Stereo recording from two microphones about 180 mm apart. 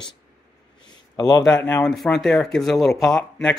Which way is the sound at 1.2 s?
20° left (ahead or behind).